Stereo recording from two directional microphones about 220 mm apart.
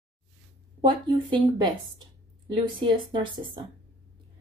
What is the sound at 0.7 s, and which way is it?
A woman's voice, 20° right (ahead or behind).